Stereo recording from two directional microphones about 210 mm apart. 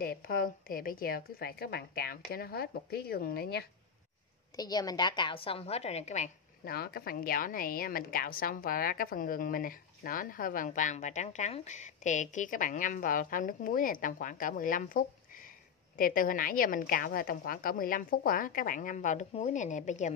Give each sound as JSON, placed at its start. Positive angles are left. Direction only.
{"t": 0.0, "sound": "a woman's voice", "side_deg": 45}
{"t": 4.6, "sound": "a woman's voice", "side_deg": 20}
{"t": 6.7, "sound": "a woman's voice", "side_deg": 45}